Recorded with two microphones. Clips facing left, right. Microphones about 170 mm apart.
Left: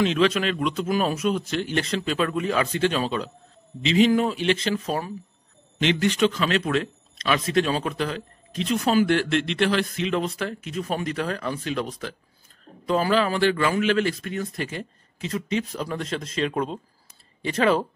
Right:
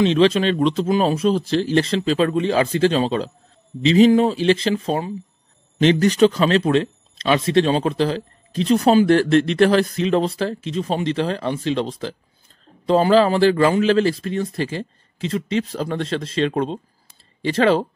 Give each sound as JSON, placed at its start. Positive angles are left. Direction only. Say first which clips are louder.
{"t": 0.0, "sound": "a man's voice", "louder": "right 5 dB", "side_deg": -30}
{"t": 5.8, "sound": "a man's voice", "louder": "right 7 dB", "side_deg": -40}